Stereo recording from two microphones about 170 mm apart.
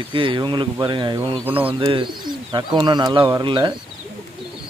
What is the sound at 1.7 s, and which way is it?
Speech, 30° right (ahead or behind).